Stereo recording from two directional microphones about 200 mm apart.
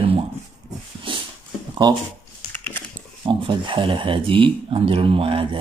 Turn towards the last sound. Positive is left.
turn(degrees=-25)  # may be behind; listen again after turning